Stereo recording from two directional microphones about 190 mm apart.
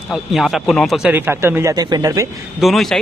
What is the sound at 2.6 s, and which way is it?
Speech, centre (ahead or behind).